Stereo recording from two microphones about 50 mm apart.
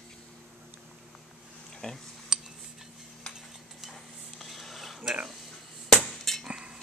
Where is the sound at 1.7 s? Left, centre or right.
Centre.